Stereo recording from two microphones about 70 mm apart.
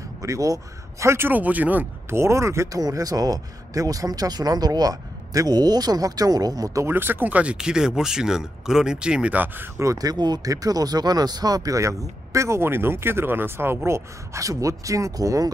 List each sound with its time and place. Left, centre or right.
0.2 s speech: right
1.3 s speech: right
2.0 s speech: right
2.8 s speech: right
6.9 s speech: right; by 9.4 s centre
9.9 s speech: right
13.8 s speech: right